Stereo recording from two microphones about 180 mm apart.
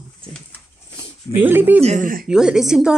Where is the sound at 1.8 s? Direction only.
45° right (ahead or behind).